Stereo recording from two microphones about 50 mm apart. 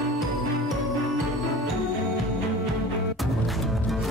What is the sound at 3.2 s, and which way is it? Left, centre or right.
Music, centre.